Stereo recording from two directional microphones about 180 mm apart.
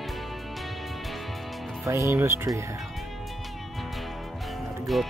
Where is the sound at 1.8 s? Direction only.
15° right (ahead or behind).